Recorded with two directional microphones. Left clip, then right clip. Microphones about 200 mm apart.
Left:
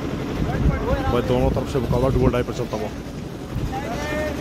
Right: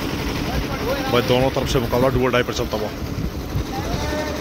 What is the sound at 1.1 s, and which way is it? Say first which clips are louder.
Speech: right 5 dB; centre (ahead or behind).